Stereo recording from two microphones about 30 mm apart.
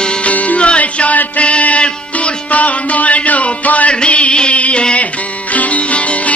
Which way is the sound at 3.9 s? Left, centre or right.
Left.